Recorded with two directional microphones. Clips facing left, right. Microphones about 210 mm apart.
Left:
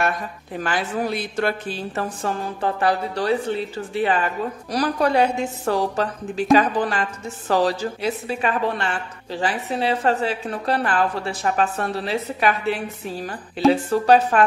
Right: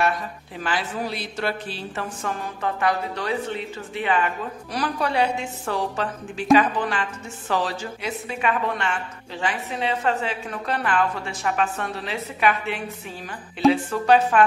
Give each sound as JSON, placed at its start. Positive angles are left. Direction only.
{"t": 0.6, "sound": "a woman's voice", "side_deg": 45}